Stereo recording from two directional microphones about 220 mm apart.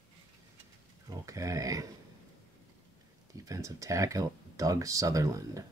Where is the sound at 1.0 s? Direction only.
15° right (ahead or behind).